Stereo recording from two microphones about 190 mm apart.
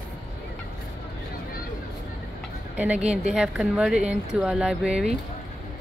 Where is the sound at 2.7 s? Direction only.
5° right (ahead or behind).